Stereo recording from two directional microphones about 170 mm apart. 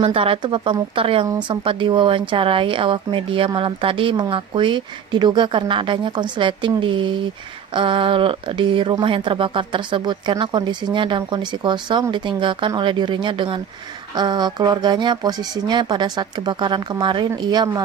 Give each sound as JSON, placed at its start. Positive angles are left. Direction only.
{"t": 0.0, "sound": "speech", "side_deg": -30}